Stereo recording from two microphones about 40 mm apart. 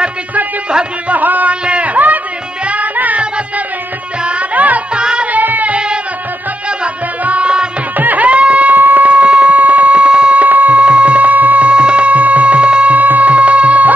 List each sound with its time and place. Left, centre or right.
1.0 s music: right
1.5 s a sound: right
2.6 s music: right
4.2 s music: right
4.6 s music: right
4.9 s music: right
5.3 s music: right
7.2 s music: right
8.0 s a sound: right
10.4 s a sound: right
11.7 s music: right
12.9 s music: right